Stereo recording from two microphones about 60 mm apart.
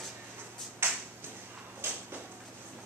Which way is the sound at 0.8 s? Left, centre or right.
Right.